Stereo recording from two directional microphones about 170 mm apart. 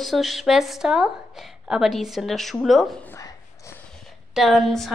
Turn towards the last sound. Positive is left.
turn(degrees=0)  # may be behind; listen again after turning